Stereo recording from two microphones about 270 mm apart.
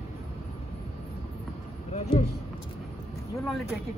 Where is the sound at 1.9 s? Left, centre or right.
Left.